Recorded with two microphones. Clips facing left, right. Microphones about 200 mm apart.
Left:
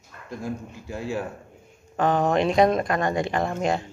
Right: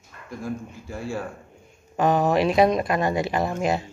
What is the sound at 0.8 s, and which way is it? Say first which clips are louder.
Speech: left 2 dB; 15° left (ahead or behind).